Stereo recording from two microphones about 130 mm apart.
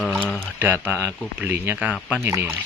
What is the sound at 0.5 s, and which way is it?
Speech, 15° right (ahead or behind).